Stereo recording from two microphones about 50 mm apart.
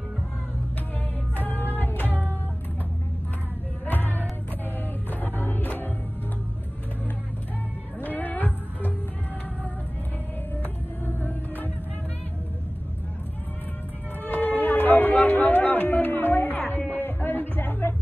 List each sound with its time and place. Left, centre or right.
1.3 s music: left
3.8 s music: left
8.0 s music: left
11.1 s music: left
14.2 s music: left